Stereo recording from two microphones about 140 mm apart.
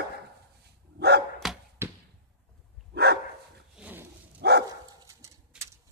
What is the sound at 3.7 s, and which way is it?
Wild animals, 10° right (ahead or behind).